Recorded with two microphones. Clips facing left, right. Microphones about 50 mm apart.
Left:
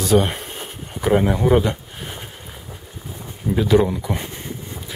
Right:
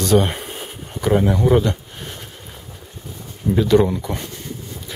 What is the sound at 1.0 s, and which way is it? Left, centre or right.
Speech, centre.